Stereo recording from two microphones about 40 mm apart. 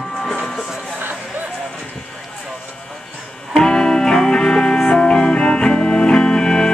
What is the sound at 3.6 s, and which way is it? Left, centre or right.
Music, centre.